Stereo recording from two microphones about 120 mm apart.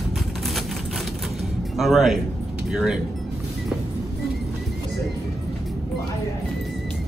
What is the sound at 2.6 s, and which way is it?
Speech, 5° right (ahead or behind).